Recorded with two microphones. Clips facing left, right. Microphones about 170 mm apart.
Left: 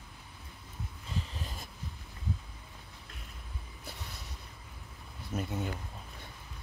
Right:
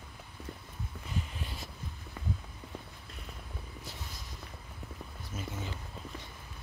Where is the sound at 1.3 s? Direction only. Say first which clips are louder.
Right 1 dB; 40° left (ahead or behind).